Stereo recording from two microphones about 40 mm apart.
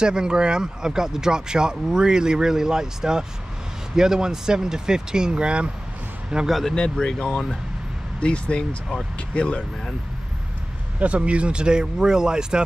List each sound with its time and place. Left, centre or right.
0.0 s speech: centre
6.4 s speech: centre
6.7 s speech: left
11.0 s speech: right